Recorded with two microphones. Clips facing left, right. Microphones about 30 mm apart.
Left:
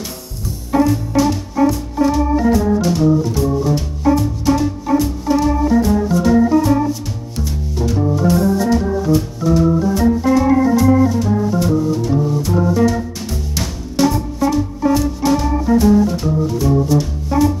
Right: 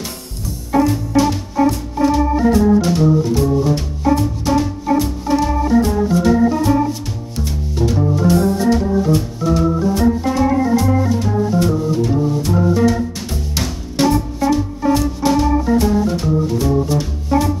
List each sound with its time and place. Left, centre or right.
0.7 s music: centre
1.6 s organ: centre
4.1 s music: centre
4.5 s organ: centre
7.4 s music: centre
7.9 s organ: centre
11.1 s music: centre